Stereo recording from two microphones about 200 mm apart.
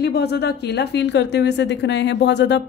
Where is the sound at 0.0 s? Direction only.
55° left (ahead or behind).